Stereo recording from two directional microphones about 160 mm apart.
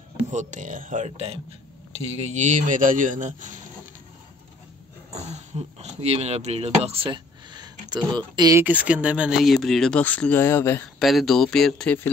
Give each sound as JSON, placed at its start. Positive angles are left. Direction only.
{"t": 0.3, "sound": "speech", "side_deg": -50}
{"t": 5.1, "sound": "speech", "side_deg": -45}
{"t": 8.6, "sound": "speech", "side_deg": -10}
{"t": 11.0, "sound": "speech", "side_deg": 0}